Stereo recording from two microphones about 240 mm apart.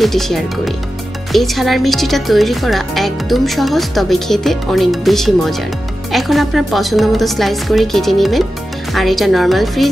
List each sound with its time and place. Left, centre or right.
0.0 s speech: centre